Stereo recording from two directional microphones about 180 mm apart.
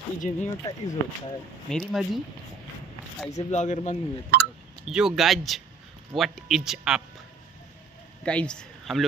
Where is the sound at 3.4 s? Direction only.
40° left (ahead or behind).